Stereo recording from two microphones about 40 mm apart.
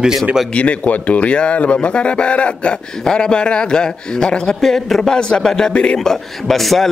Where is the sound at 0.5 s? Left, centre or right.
Left.